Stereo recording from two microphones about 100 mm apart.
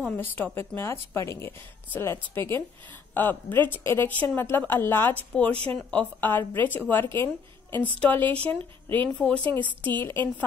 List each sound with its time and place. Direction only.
0.0 s speech: 20° left (ahead or behind)